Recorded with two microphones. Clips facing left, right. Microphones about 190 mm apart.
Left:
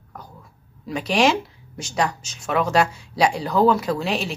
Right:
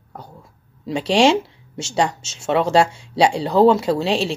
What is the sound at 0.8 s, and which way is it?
Speech, 30° right (ahead or behind).